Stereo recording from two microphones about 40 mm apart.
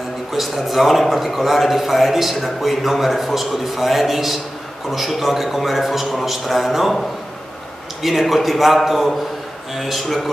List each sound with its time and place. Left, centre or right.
0.3 s a man's voice: centre
8.0 s a man's voice: centre